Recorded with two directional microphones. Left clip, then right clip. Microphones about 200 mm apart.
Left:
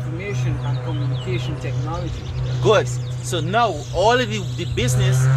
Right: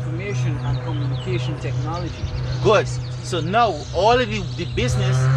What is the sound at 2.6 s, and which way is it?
Speech, 10° left (ahead or behind).